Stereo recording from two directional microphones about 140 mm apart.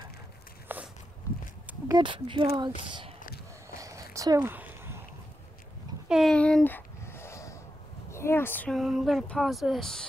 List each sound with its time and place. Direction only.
0.7 s walk: 15° right (ahead or behind)
1.9 s speech: 30° right (ahead or behind)
3.7 s a sound: 20° right (ahead or behind)
6.0 s speech: 5° right (ahead or behind)
6.3 s a sound: 10° left (ahead or behind)
8.1 s speech: 20° left (ahead or behind)
8.7 s female singing: centre (ahead or behind)